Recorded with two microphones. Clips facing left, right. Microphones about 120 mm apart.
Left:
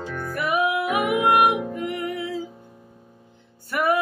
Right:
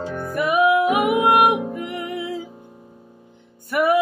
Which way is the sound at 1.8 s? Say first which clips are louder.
Even; 15° right (ahead or behind).